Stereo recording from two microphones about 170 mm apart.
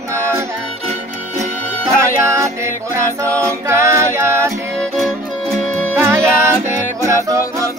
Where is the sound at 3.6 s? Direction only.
15° right (ahead or behind).